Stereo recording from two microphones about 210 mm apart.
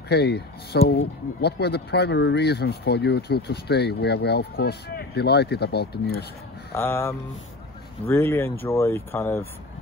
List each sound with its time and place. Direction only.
0.1 s speech: 50° left (ahead or behind)
6.7 s speech: 10° left (ahead or behind)